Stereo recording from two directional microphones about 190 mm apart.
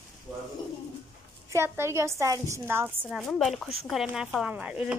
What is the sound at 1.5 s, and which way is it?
A woman's voice, 15° right (ahead or behind).